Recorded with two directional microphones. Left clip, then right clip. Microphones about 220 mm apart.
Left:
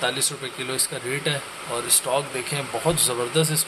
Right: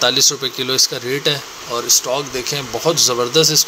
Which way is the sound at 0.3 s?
20° right (ahead or behind).